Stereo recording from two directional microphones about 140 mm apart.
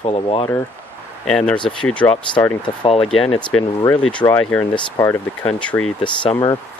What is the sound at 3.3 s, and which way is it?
Speech, 35° left (ahead or behind).